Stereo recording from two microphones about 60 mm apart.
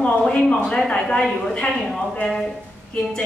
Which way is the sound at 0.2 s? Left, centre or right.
Centre.